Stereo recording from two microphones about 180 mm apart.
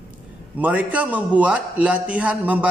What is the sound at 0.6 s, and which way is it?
A man's voice, 10° right (ahead or behind).